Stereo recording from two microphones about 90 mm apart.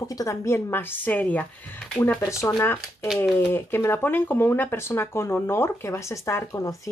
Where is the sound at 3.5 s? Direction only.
25° left (ahead or behind).